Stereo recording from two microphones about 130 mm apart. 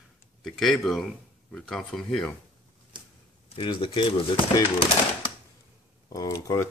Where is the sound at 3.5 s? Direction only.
40° left (ahead or behind).